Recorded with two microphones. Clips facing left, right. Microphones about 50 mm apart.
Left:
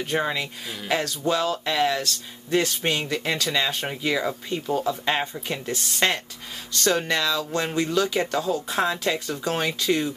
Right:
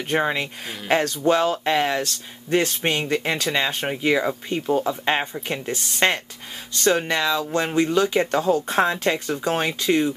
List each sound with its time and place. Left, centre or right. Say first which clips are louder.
0.2 s speech: right 3 dB; right